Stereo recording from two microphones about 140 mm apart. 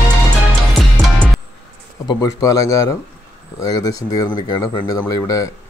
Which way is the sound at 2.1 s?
25° left (ahead or behind).